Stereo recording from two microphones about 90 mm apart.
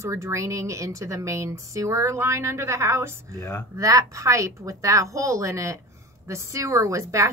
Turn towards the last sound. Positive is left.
turn(degrees=-35)  # may be behind; listen again after turning